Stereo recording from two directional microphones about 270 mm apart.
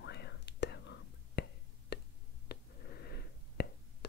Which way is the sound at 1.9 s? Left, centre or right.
Left.